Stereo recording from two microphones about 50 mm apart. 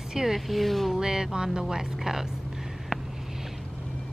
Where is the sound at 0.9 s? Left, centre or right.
Centre.